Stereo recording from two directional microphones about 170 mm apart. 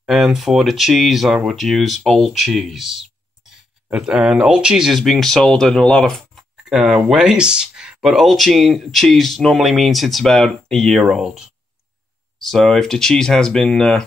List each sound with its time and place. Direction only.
0.0 s speech: centre (ahead or behind)
12.4 s speech: centre (ahead or behind)